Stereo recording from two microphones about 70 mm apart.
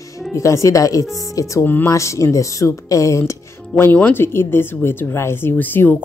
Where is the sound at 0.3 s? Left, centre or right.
Left.